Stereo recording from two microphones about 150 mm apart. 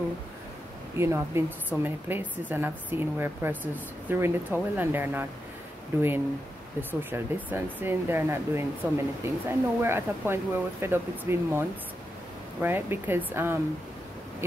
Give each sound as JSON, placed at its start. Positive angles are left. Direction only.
{"t": 0.9, "sound": "a woman's voice", "side_deg": -15}
{"t": 12.6, "sound": "a woman's voice", "side_deg": -15}